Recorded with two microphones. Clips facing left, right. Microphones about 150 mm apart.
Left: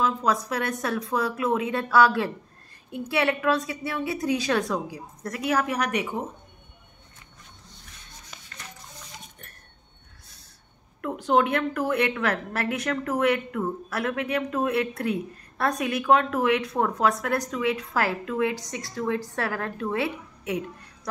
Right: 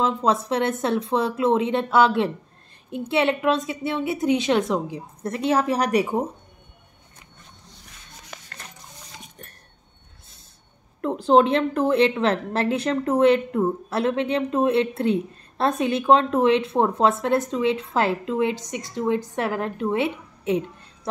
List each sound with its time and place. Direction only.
0.0 s a woman's voice: 25° right (ahead or behind)
11.0 s a woman's voice: 30° right (ahead or behind)